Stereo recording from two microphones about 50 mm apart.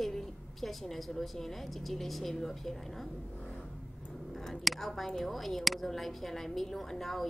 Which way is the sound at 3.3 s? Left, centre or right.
Left.